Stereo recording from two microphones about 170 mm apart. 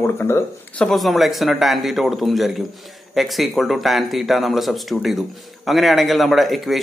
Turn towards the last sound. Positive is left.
turn(degrees=0)  # may be behind; listen again after turning